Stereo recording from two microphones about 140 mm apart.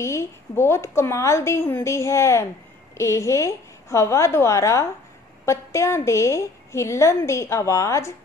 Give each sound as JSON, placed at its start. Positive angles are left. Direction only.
{"t": 0.0, "sound": "a woman's voice", "side_deg": 20}